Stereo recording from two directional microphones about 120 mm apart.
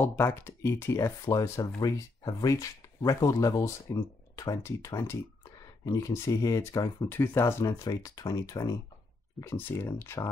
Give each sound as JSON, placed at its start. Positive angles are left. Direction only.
{"t": 0.0, "sound": "speech", "side_deg": 20}
{"t": 9.4, "sound": "speech", "side_deg": 20}